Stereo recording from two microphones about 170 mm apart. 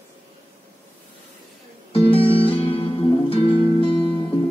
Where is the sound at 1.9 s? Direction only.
35° left (ahead or behind).